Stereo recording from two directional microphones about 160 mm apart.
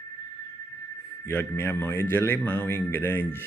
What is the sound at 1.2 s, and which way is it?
Speech, 15° left (ahead or behind).